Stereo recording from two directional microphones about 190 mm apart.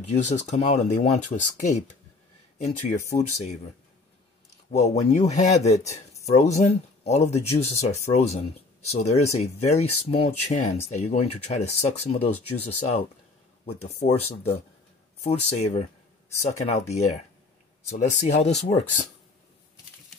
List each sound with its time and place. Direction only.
0.0 s speech: 35° left (ahead or behind)
3.1 s speech: 35° left (ahead or behind)
4.6 s speech: 35° left (ahead or behind)